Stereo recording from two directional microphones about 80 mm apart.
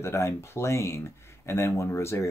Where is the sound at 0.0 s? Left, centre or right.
Left.